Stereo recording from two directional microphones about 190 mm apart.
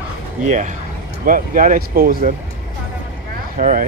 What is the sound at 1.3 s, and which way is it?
Speech, 45° right (ahead or behind).